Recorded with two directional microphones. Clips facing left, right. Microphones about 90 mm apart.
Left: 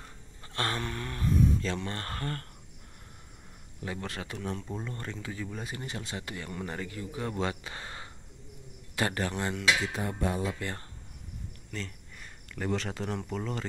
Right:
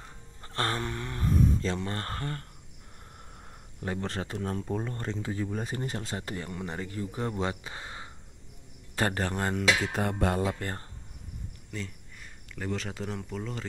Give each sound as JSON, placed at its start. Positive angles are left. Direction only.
{"t": 0.4, "sound": "speech", "side_deg": -35}
{"t": 3.8, "sound": "speech", "side_deg": -40}
{"t": 5.0, "sound": "speech", "side_deg": -30}
{"t": 7.3, "sound": "speech", "side_deg": -20}
{"t": 8.9, "sound": "speech", "side_deg": -35}
{"t": 10.0, "sound": "speech", "side_deg": -65}
{"t": 10.5, "sound": "speech", "side_deg": -40}
{"t": 11.7, "sound": "speech", "side_deg": -15}
{"t": 12.2, "sound": "speech", "side_deg": 0}